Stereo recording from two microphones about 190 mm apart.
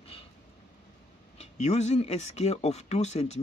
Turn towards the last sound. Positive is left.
turn(degrees=35)  # may be behind; listen again after turning